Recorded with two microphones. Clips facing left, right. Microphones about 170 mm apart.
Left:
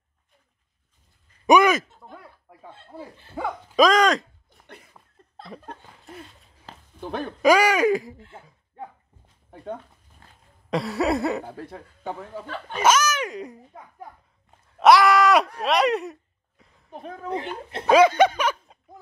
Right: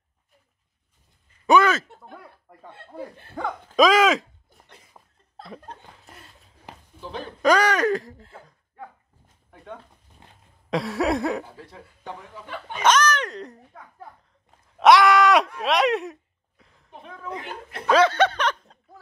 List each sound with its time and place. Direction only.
1.4 s a sound: 15° left (ahead or behind)
2.7 s speech: 60° right (ahead or behind)
3.3 s speech: 5° left (ahead or behind)
7.0 s speech: 55° left (ahead or behind)
7.4 s speech: 10° left (ahead or behind)
10.7 s a sound: centre (ahead or behind)
11.4 s speech: 50° left (ahead or behind)
12.8 s speech: 10° left (ahead or behind)
14.8 s a sound: centre (ahead or behind)
16.9 s speech: 40° left (ahead or behind)
17.8 s snicker: 10° left (ahead or behind)